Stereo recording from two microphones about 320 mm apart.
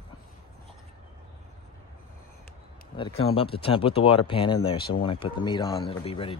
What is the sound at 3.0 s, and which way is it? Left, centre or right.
Speech, centre.